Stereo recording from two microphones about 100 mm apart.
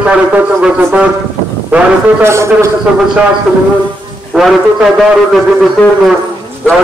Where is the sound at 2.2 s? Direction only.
25° right (ahead or behind).